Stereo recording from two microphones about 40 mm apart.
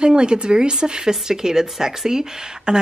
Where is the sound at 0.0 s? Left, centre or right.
Right.